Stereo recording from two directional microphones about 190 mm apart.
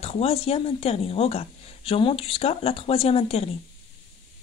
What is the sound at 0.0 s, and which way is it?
Speech, 30° left (ahead or behind).